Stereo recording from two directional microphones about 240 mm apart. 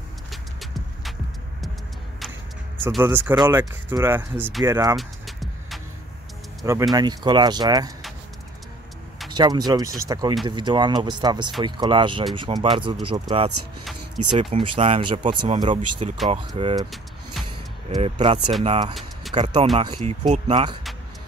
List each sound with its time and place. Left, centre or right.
0.3 s vehicle: centre
2.8 s speech: centre
4.9 s vehicle: centre
6.6 s speech: centre
9.3 s speech: centre
16.9 s vehicle: centre
17.8 s speech: right